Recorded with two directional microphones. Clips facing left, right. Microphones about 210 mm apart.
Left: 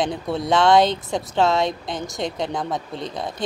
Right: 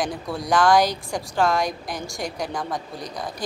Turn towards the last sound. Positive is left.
turn(degrees=25)  # may be behind; listen again after turning